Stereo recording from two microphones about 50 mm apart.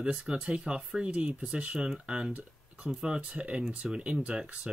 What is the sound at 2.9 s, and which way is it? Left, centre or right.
Speech, centre.